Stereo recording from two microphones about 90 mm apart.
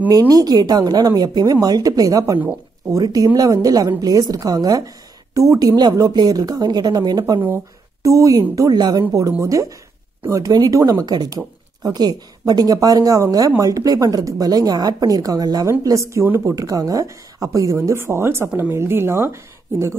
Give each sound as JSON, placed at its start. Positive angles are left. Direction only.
{"t": 0.3, "sound": "speech", "side_deg": -45}